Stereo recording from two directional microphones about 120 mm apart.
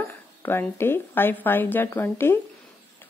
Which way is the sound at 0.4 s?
20° left (ahead or behind).